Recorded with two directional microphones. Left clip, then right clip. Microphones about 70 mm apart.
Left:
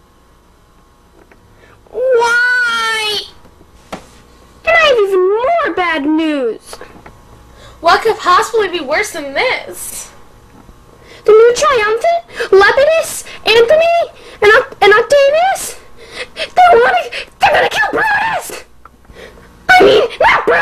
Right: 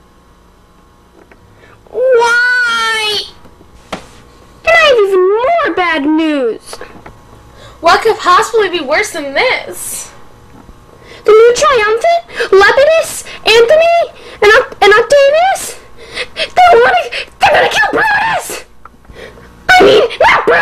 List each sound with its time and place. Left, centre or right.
2.0 s hoot: right
3.9 s a sound: right
7.6 s a woman's voice: right
11.1 s a sound: right
11.4 s wail: right
19.1 s sneeze: right